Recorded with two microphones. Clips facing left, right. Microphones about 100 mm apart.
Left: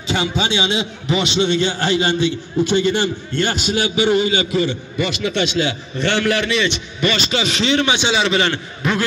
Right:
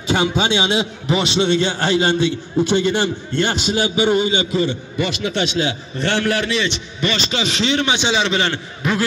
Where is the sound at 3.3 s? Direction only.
25° right (ahead or behind).